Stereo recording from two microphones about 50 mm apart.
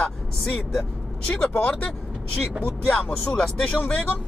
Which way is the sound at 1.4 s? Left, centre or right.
Left.